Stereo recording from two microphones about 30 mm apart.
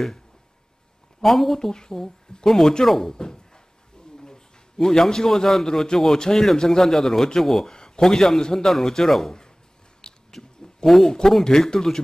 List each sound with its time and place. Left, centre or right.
1.2 s a man's voice: centre
1.6 s a man's voice: centre
4.7 s a man's voice: centre
6.1 s a man's voice: left; by 7.7 s centre
7.7 s a man's voice: left
10.3 s a sound: centre
11.4 s a man's voice: left